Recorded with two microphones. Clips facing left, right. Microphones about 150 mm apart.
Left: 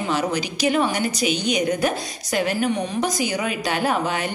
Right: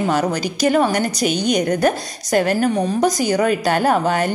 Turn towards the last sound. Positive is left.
turn(degrees=-45)  # may be behind; listen again after turning